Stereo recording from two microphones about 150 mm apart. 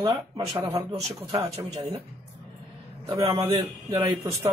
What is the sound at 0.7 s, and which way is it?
Speech, 45° right (ahead or behind).